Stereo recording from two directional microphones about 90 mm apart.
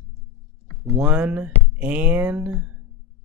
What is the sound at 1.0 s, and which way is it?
Speech, 15° right (ahead or behind).